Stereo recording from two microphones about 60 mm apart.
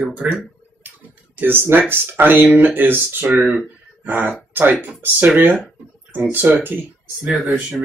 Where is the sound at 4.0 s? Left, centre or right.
Right.